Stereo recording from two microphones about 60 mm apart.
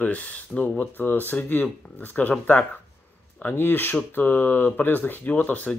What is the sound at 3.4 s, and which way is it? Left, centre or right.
Speech, left.